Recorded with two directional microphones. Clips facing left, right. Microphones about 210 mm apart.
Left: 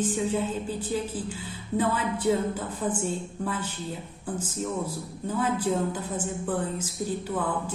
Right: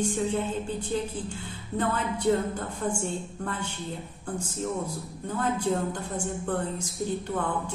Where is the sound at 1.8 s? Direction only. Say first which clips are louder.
Left 1 dB; 5° left (ahead or behind).